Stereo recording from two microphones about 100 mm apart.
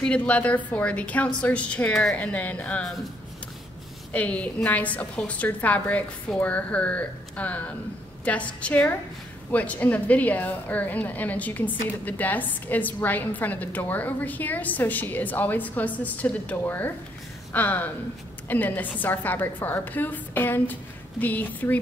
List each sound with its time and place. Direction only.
0.0 s a woman's voice: 10° left (ahead or behind)
4.1 s a woman's voice: 15° left (ahead or behind)